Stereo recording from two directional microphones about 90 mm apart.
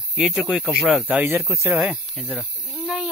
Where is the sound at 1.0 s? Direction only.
20° right (ahead or behind).